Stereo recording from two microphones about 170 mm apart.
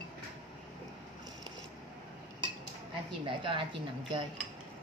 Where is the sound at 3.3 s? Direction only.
30° right (ahead or behind).